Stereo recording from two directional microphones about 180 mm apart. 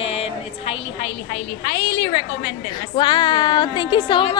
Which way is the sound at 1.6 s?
90° left.